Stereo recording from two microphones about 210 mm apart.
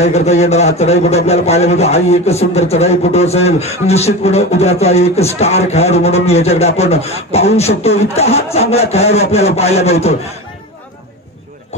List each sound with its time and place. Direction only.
0.0 s a man's voice: 30° left (ahead or behind)